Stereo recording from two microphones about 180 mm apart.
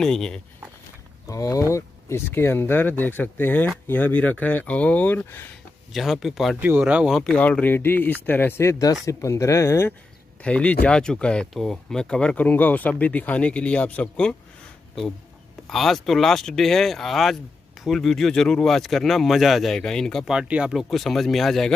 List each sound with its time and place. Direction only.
0.0 s speech: 5° left (ahead or behind)
1.2 s speech: 20° left (ahead or behind)
5.9 s speech: centre (ahead or behind)
15.6 s speech: centre (ahead or behind)